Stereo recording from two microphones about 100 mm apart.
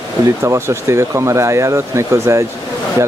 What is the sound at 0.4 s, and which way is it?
Speech, 30° right (ahead or behind).